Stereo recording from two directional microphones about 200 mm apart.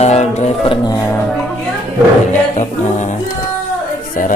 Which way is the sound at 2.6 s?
35° left (ahead or behind).